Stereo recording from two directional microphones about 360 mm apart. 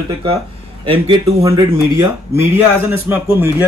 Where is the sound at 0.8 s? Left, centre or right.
Centre.